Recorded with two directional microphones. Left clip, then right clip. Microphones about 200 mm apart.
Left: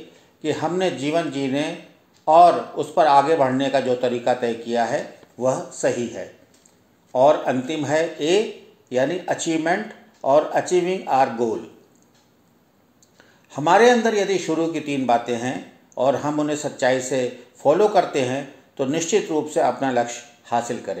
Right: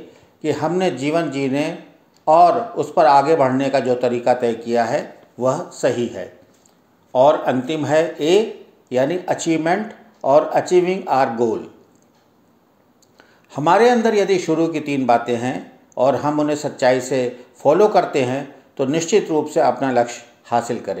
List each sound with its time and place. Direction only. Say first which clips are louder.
0.4 s a man's voice: right 3 dB; 30° right (ahead or behind)
13.5 s a man's voice: right 1 dB; 30° right (ahead or behind)